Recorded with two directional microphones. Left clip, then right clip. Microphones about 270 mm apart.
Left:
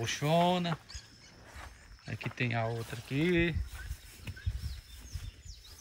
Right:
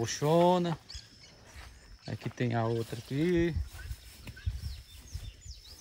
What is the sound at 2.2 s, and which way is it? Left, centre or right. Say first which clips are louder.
Speech: left 1 dB; centre.